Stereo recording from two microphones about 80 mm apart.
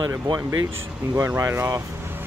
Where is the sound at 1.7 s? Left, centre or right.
Right.